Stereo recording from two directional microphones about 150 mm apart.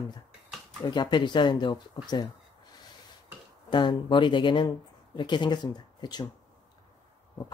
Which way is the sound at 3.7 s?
30° left (ahead or behind).